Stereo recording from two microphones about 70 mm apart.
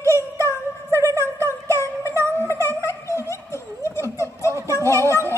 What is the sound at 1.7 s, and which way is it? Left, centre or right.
Music, left.